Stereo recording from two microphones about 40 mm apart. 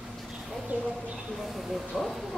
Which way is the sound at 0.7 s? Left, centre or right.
Right.